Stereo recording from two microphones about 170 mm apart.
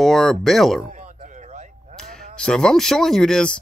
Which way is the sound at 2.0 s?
Centre (ahead or behind).